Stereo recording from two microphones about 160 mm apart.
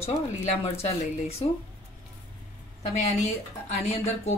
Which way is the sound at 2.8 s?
45° left (ahead or behind).